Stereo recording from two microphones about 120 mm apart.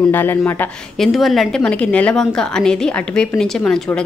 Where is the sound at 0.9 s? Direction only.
Centre (ahead or behind).